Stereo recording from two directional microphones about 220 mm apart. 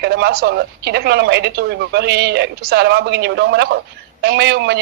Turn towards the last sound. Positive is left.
turn(degrees=-50)  # may be behind; listen again after turning